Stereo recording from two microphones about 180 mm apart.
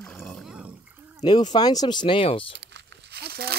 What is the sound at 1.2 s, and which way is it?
Speech, 25° left (ahead or behind).